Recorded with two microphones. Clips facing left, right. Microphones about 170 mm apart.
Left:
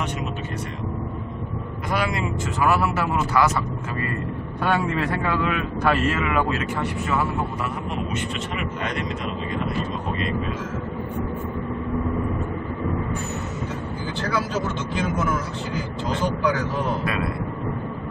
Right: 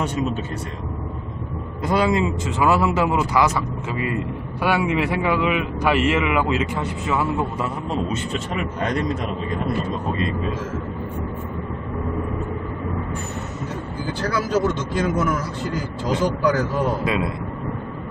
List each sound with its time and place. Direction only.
1.9 s a man's voice: 25° right (ahead or behind)
4.6 s a man's voice: 10° right (ahead or behind)